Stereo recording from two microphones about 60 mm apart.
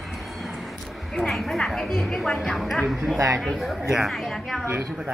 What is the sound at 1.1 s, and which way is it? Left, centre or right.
Speech, centre.